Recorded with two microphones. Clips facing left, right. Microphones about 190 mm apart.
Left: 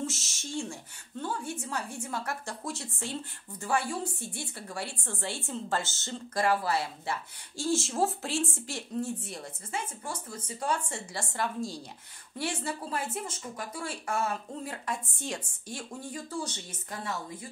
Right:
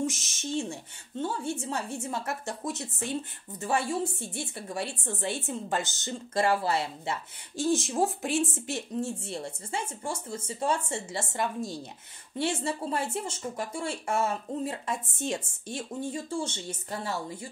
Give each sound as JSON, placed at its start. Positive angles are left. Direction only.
{"t": 0.0, "sound": "a woman's voice", "side_deg": -15}